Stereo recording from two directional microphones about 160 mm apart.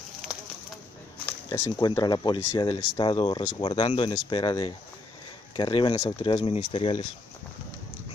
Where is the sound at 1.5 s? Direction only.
25° left (ahead or behind).